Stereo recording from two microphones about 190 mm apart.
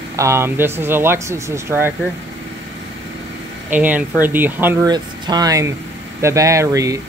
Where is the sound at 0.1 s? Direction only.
15° right (ahead or behind).